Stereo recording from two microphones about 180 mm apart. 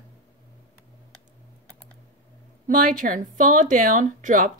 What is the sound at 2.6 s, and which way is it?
A woman's voice, 50° right (ahead or behind).